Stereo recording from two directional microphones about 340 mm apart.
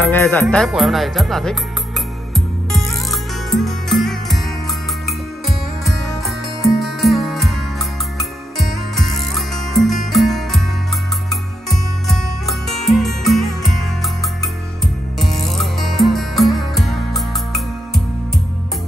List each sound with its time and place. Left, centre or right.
0.1 s speech: centre
2.3 s music: centre